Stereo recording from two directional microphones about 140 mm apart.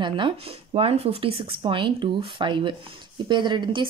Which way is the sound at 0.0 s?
35° right (ahead or behind).